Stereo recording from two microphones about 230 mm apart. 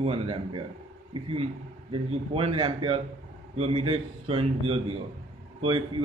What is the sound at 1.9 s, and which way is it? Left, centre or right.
A man's voice, right.